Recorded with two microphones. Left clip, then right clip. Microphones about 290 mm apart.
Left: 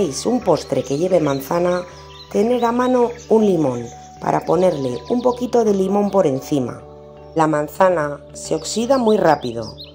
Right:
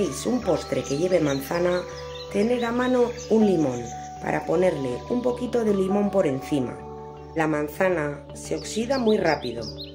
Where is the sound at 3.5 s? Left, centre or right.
Centre.